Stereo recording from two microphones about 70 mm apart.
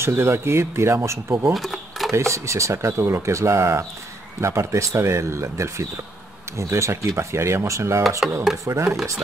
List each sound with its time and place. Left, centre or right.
0.0 s speech: right
1.5 s a sound: centre
2.1 s speech: right
8.2 s speech: centre
8.7 s speech: right